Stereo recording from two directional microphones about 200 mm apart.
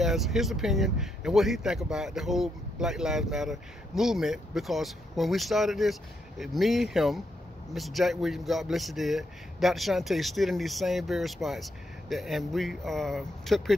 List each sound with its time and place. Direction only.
0.0 s speech: centre (ahead or behind)